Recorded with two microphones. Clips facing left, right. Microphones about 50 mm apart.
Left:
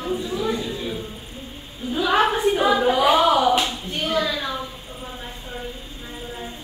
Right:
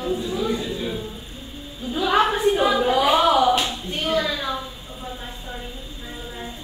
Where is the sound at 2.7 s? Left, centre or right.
Centre.